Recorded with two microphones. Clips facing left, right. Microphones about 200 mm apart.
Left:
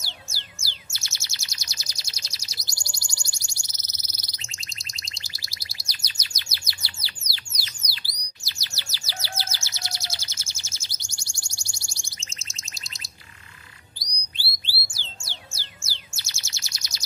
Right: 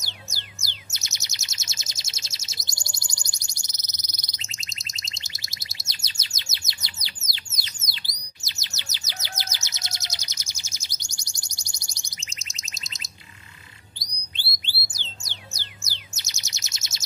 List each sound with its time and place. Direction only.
0.0 s chirp: 20° right (ahead or behind)
14.9 s bird: 20° right (ahead or behind)